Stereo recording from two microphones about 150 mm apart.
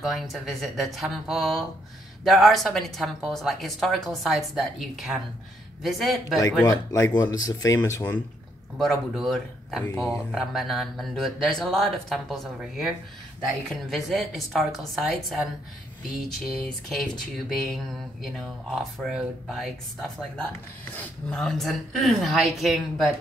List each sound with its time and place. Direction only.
0.0 s a woman's voice: centre (ahead or behind)
6.6 s speech: 25° left (ahead or behind)
8.7 s a woman's voice: centre (ahead or behind)
18.2 s a woman's voice: centre (ahead or behind)